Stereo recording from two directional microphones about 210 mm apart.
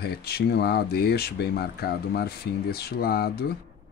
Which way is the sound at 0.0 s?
50° left (ahead or behind).